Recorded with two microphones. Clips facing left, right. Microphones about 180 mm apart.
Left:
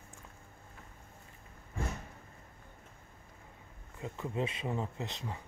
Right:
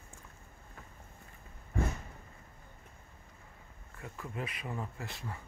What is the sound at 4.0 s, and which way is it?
Speech, 20° left (ahead or behind).